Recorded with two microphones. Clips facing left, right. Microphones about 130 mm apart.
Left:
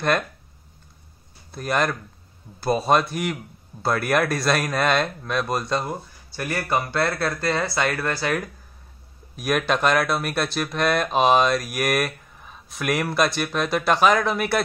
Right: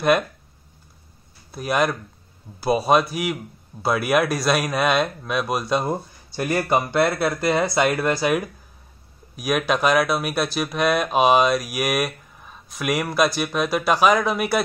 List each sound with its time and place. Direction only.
1.5 s speech: 5° right (ahead or behind)
5.9 s speech: 20° right (ahead or behind)
9.3 s speech: centre (ahead or behind)